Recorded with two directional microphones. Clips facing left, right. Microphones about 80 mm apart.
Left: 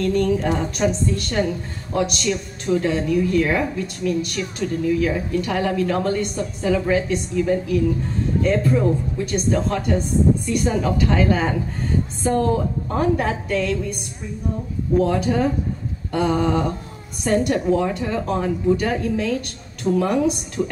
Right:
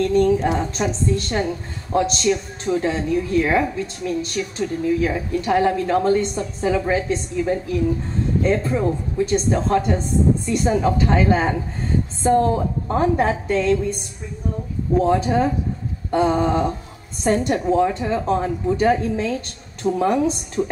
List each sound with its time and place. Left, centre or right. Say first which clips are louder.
0.0 s a woman's voice: right 3 dB; right
15.0 s a woman's voice: right 1 dB; right